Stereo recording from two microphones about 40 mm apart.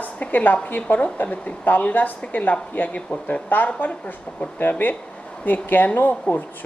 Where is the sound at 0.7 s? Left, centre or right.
Left.